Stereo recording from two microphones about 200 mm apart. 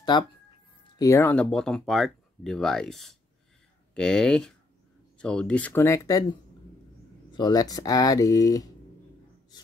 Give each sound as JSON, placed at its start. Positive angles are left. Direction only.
{"t": 0.9, "sound": "speech", "side_deg": 15}
{"t": 7.3, "sound": "speech", "side_deg": 20}